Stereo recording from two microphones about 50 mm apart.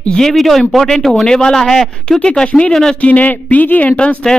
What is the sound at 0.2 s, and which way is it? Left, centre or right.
Speech, centre.